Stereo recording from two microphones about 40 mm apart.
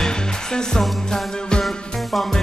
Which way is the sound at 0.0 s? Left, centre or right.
Centre.